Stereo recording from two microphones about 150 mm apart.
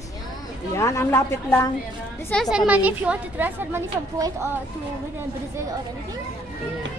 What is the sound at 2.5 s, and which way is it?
A woman's voice, 10° right (ahead or behind).